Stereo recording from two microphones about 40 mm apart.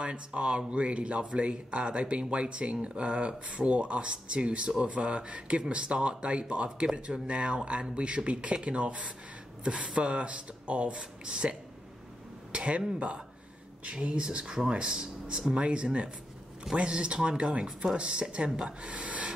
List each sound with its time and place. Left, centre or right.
0.0 s speech: right
12.5 s speech: right
13.8 s speech: right
15.6 s speech: right